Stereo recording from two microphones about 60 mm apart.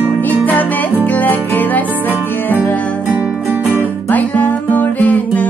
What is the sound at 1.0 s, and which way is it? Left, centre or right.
Music, left.